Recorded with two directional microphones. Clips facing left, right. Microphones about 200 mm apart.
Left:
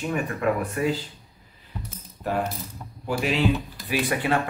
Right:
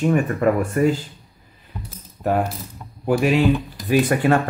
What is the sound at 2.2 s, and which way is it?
Coin, 50° right (ahead or behind).